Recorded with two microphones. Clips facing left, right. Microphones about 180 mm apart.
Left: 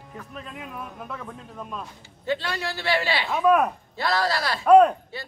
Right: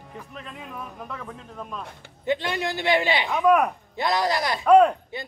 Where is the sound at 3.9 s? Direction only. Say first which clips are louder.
Right 2 dB; 20° right (ahead or behind).